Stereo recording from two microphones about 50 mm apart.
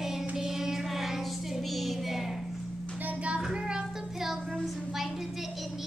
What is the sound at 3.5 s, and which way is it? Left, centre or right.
Music, centre.